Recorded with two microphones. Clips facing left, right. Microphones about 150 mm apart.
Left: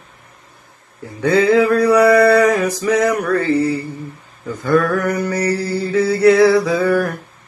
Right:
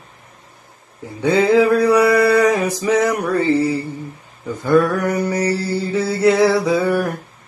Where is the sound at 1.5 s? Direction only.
10° right (ahead or behind).